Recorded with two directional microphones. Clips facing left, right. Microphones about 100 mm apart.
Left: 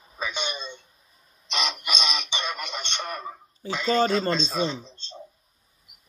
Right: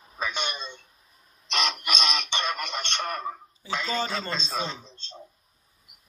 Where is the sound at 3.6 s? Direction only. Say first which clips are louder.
Even; 50° left (ahead or behind).